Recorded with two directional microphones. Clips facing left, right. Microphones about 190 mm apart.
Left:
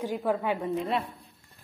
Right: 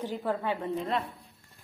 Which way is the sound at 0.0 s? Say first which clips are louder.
Left 3 dB; 10° left (ahead or behind).